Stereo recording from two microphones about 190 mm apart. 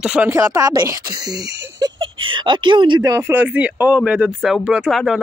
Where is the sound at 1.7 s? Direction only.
20° right (ahead or behind).